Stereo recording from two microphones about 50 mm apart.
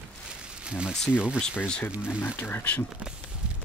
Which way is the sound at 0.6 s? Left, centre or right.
Centre.